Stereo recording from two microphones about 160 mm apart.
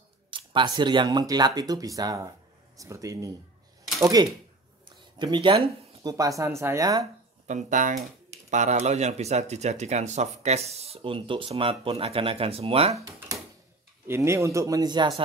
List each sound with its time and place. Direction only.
0.3 s speech: 30° right (ahead or behind)
4.8 s a sound: 30° right (ahead or behind)
6.0 s speech: 20° right (ahead or behind)
7.4 s speech: 50° right (ahead or behind)
14.0 s speech: 15° right (ahead or behind)